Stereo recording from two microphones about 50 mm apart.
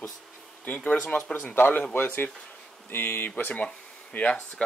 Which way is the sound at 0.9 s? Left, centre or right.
Centre.